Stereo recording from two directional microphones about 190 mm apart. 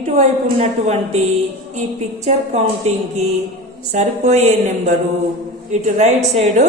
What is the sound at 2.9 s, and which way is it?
A woman's voice, 35° right (ahead or behind).